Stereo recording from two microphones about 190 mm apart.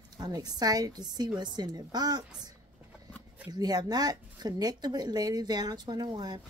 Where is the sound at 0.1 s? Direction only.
20° right (ahead or behind).